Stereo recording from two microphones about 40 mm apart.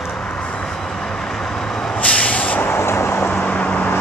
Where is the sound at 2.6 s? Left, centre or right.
Left.